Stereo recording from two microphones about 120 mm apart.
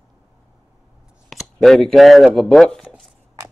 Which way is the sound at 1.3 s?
Centre (ahead or behind).